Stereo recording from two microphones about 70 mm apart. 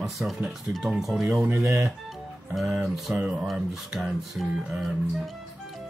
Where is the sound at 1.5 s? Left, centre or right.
Right.